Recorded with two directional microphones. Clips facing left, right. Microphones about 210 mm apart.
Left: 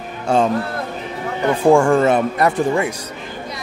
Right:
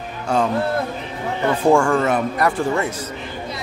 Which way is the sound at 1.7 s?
20° left (ahead or behind).